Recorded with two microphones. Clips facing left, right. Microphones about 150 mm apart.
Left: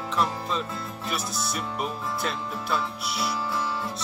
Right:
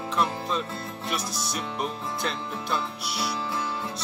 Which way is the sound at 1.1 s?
Centre (ahead or behind).